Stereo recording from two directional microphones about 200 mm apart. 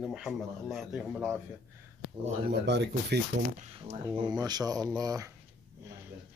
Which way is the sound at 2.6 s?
60° right (ahead or behind).